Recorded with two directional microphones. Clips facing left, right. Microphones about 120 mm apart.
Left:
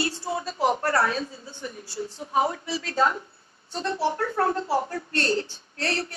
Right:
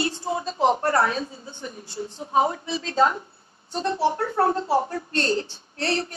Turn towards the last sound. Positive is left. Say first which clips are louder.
# right 3 dB
turn(degrees=-20)  # may be behind; listen again after turning